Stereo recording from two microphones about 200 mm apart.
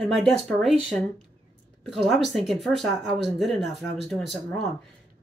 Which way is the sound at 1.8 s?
Centre (ahead or behind).